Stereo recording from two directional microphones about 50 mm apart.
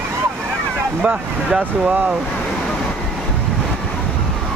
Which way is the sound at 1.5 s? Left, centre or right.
Centre.